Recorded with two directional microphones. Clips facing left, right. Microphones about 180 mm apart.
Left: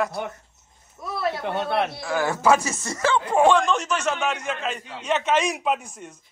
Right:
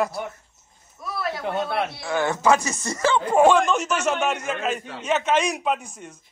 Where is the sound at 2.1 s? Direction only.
5° left (ahead or behind).